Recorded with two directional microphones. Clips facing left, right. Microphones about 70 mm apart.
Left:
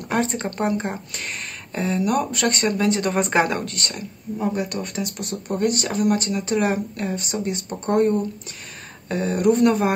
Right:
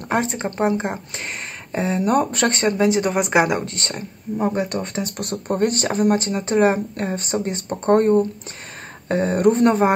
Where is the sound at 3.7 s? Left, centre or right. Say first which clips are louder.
Right 1 dB; right.